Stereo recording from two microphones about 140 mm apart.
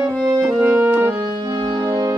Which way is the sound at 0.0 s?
25° right (ahead or behind).